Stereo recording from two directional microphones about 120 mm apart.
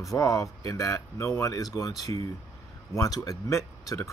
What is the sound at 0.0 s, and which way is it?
Speech, 25° left (ahead or behind).